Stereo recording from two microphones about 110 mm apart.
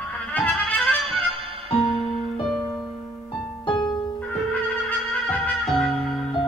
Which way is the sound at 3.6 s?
45° left (ahead or behind).